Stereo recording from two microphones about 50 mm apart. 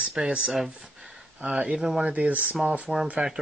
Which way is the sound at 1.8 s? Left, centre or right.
Centre.